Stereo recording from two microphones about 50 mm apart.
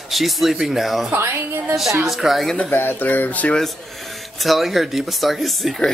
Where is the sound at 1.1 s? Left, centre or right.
Right.